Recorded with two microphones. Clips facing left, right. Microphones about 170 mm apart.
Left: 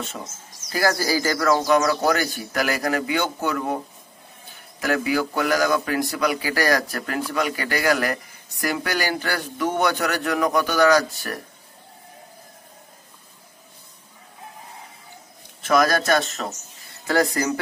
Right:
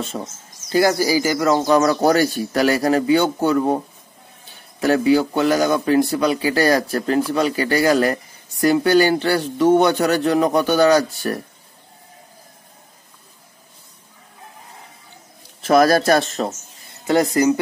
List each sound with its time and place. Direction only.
0.0 s speech: 30° right (ahead or behind)
1.7 s speech: 35° right (ahead or behind)
15.6 s speech: 35° right (ahead or behind)
17.0 s speech: 20° right (ahead or behind)